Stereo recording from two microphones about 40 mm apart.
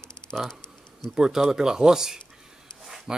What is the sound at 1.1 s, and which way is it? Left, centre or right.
Speech, centre.